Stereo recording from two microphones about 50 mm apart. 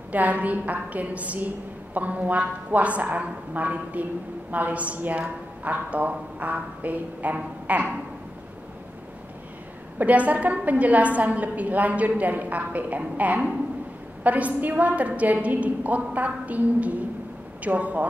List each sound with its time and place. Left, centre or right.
0.1 s a woman's voice: right
7.6 s a sound: right
9.9 s a woman's voice: right